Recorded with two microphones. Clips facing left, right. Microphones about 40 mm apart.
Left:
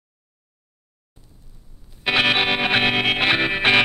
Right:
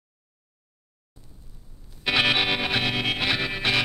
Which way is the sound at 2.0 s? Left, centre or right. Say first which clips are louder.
Left 3 dB; centre.